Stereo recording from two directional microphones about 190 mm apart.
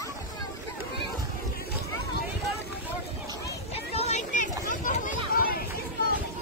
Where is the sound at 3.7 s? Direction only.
35° left (ahead or behind); by 5.6 s 50° left (ahead or behind).